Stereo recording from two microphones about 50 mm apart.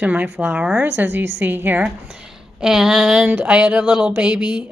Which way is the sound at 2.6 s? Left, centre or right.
Centre.